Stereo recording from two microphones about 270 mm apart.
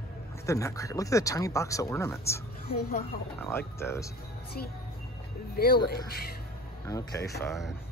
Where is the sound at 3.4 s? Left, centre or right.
Centre.